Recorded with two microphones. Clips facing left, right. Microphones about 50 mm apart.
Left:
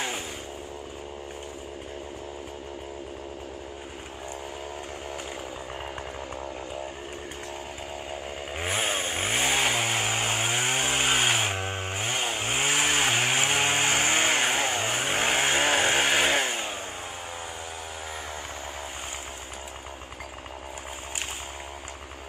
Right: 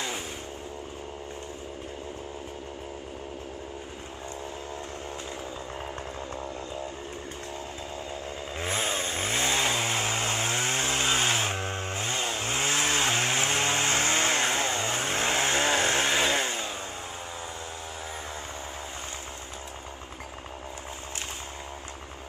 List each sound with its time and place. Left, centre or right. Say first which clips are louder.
8.1 s chainsaw: left 1 dB; left
8.7 s chainsaw: left 2 dB; left